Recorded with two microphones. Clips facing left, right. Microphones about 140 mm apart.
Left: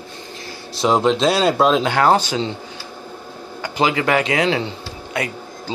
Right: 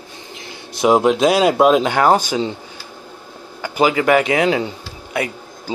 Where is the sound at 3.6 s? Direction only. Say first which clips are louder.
Right 3 dB; 10° right (ahead or behind).